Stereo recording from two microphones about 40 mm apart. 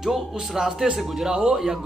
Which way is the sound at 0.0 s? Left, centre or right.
Centre.